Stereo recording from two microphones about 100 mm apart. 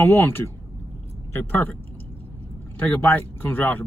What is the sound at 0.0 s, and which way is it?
A man's voice, 20° left (ahead or behind).